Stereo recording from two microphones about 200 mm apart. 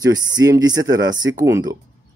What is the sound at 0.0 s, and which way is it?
Speech, 20° right (ahead or behind).